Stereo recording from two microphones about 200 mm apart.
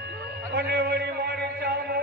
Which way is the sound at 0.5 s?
55° right (ahead or behind).